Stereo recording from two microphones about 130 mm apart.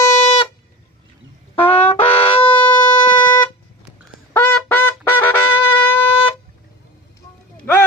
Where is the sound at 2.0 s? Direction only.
50° left (ahead or behind).